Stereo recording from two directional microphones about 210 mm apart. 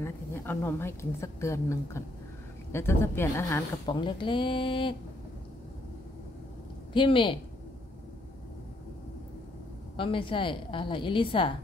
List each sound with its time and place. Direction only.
0.0 s a woman's voice: 10° left (ahead or behind)
6.9 s a woman's voice: 25° left (ahead or behind)
9.9 s a woman's voice: 25° left (ahead or behind)